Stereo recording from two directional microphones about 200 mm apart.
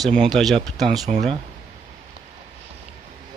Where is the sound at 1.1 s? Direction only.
35° right (ahead or behind).